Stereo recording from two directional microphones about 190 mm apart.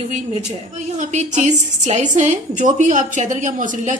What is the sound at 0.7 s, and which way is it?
A woman's voice, 40° right (ahead or behind).